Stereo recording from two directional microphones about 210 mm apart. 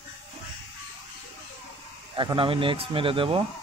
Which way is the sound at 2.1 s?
25° right (ahead or behind).